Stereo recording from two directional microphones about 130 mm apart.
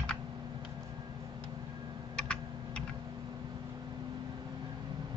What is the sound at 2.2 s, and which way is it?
Computer keyboard, 5° left (ahead or behind).